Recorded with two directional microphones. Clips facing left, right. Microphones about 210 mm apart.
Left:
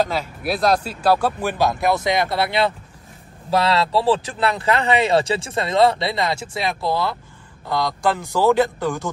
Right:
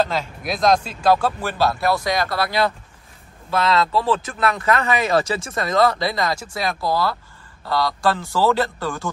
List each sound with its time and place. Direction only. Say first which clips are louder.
0.0 s speech: even; 10° left (ahead or behind)